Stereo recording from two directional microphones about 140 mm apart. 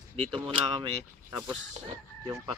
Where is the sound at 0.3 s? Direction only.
40° right (ahead or behind).